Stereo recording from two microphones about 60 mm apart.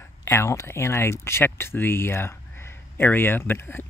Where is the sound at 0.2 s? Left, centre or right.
Left.